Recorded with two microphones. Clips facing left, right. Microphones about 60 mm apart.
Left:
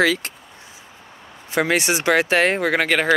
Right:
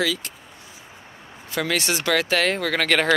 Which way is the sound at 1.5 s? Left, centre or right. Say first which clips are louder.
Left 5 dB; left.